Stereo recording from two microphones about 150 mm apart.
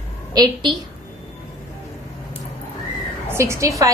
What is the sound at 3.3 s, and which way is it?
Speech, 20° right (ahead or behind).